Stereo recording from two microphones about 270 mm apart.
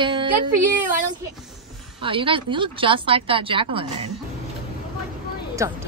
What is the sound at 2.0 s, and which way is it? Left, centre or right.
Speech, centre.